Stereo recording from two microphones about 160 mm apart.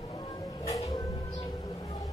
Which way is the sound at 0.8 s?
30° left (ahead or behind).